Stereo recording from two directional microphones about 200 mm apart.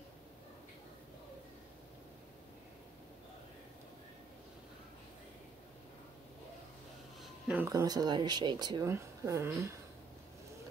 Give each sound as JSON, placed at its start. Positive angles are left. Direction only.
{"t": 7.4, "sound": "speech", "side_deg": -10}